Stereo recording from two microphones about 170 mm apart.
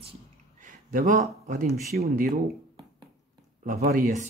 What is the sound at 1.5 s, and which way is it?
Speech, 60° right (ahead or behind).